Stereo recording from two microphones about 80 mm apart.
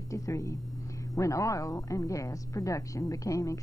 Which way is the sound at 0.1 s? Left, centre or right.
Left.